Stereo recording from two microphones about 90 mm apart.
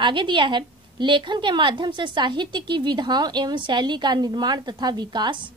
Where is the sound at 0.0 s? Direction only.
60° right (ahead or behind).